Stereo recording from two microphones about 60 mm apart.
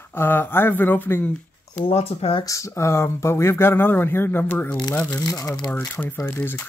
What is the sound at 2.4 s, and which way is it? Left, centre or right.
Speech, left.